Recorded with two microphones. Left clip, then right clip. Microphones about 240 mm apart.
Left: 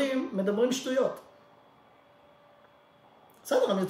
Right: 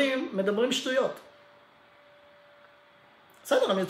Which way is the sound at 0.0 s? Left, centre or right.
Centre.